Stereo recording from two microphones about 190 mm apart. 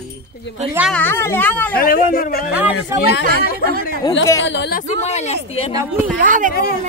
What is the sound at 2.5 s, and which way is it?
Speech, 10° right (ahead or behind).